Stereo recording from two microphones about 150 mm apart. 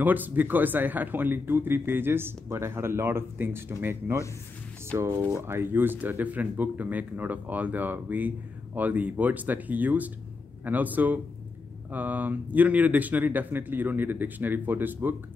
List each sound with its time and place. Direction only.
0.0 s speech: 10° right (ahead or behind)